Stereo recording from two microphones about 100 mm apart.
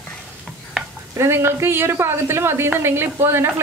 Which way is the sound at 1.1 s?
25° right (ahead or behind).